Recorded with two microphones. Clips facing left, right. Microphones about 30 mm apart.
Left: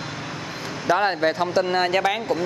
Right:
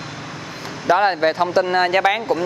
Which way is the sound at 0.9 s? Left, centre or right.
Centre.